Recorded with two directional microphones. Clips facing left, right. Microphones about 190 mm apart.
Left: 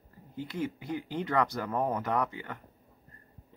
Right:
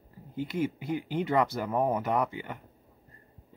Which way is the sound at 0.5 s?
10° right (ahead or behind).